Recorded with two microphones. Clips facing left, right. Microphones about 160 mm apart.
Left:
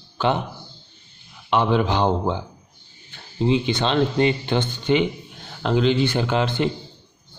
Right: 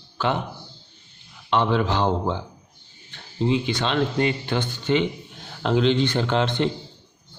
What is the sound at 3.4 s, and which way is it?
Speech, 20° left (ahead or behind).